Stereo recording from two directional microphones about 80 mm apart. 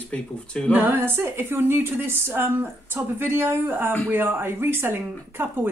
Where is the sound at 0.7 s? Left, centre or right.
Right.